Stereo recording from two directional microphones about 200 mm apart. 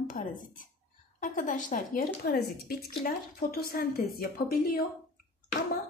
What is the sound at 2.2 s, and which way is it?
A woman's voice, 55° left (ahead or behind).